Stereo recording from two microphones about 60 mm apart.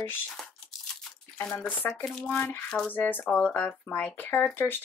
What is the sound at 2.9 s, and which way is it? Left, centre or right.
Speech, left.